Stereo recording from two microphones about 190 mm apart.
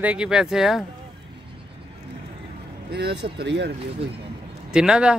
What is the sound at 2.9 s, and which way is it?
Speech, 60° right (ahead or behind).